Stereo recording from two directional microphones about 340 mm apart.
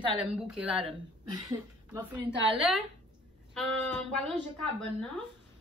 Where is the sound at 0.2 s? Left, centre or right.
Centre.